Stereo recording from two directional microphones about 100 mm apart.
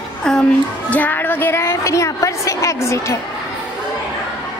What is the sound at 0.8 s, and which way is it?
A woman's voice, 15° left (ahead or behind).